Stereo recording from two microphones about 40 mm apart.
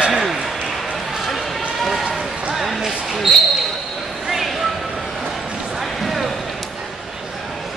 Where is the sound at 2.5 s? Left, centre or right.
Centre.